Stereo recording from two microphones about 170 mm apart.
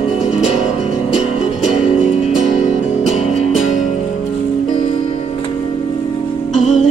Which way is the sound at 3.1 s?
Centre (ahead or behind).